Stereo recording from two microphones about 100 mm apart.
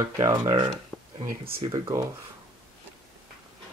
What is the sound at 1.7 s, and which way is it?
Speech, 30° right (ahead or behind).